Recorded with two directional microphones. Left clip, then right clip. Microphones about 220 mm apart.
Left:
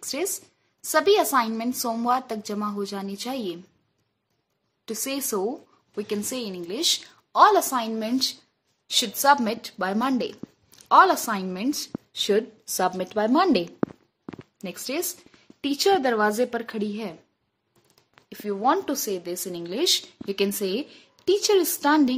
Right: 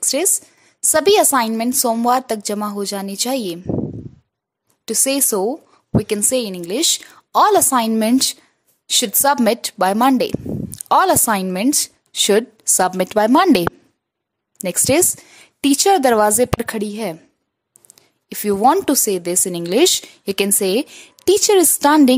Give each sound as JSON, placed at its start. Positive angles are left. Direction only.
{"t": 0.0, "sound": "speech", "side_deg": -40}
{"t": 4.8, "sound": "speech", "side_deg": -45}